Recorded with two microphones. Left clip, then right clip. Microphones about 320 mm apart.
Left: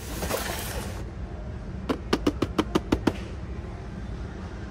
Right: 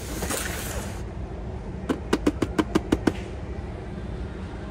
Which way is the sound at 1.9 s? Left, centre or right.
Left.